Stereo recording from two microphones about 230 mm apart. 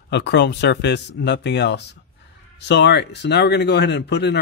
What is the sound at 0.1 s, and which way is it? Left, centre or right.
Speech, left.